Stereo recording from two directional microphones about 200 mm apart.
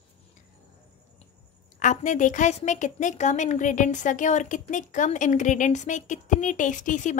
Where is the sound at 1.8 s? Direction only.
40° left (ahead or behind).